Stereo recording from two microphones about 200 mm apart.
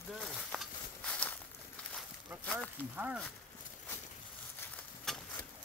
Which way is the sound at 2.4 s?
5° left (ahead or behind).